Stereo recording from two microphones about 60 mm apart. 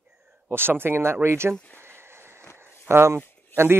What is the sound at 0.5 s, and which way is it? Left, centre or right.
Speech, right.